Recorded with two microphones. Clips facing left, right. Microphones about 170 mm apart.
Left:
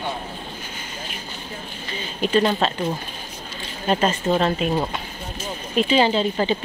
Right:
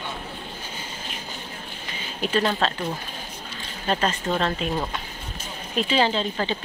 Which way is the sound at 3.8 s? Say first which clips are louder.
Left 4 dB; 5° left (ahead or behind).